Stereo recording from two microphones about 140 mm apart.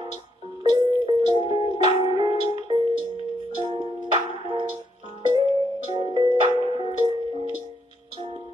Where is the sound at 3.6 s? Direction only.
40° right (ahead or behind).